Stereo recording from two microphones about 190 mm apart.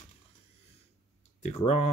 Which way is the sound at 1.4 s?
35° left (ahead or behind).